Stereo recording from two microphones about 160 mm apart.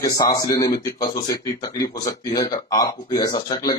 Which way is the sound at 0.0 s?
25° left (ahead or behind).